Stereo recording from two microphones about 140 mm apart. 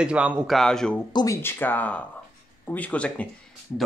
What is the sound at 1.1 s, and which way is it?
Speech, 20° left (ahead or behind).